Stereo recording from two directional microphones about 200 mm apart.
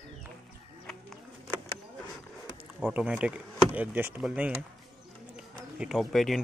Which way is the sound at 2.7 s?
Centre (ahead or behind).